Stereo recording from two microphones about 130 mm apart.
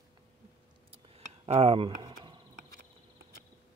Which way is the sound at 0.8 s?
50° right (ahead or behind).